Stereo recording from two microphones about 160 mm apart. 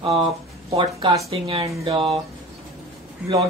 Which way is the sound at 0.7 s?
30° right (ahead or behind).